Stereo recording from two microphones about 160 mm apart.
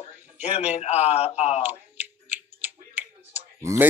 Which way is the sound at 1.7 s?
10° right (ahead or behind).